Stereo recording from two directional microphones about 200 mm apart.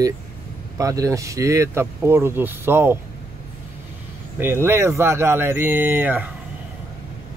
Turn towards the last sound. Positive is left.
turn(degrees=-10)  # may be behind; listen again after turning